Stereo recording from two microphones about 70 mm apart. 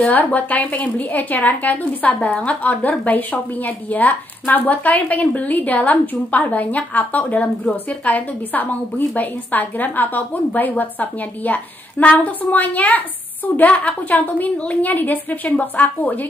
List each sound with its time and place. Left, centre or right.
0.0 s a woman's voice: left